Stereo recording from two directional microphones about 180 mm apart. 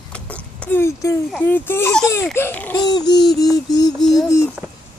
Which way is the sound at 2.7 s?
20° left (ahead or behind).